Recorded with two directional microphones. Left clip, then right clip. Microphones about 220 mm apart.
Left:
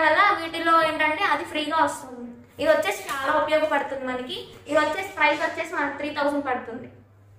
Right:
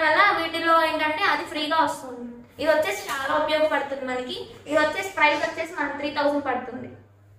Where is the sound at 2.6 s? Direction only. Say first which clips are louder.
Left 1 dB; centre (ahead or behind).